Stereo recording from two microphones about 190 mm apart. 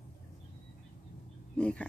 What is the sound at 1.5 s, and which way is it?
Speech, 5° left (ahead or behind).